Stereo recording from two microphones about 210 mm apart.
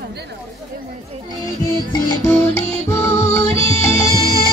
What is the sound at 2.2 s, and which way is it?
Music, 10° left (ahead or behind).